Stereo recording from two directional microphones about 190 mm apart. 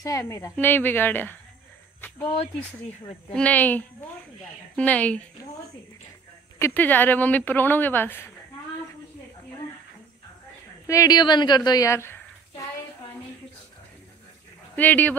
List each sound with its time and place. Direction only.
0.0 s speech: 15° left (ahead or behind)
2.0 s cricket: 10° left (ahead or behind)
3.3 s speech: 10° left (ahead or behind)
6.6 s speech: 10° left (ahead or behind)
10.9 s a woman's voice: 20° left (ahead or behind)
14.8 s speech: 10° left (ahead or behind)